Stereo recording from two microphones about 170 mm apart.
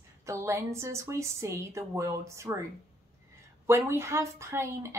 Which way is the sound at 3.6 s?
15° right (ahead or behind).